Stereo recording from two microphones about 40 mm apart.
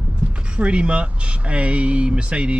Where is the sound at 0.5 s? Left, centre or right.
Right.